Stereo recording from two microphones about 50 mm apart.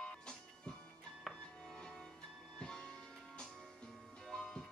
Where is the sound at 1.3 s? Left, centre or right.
Centre.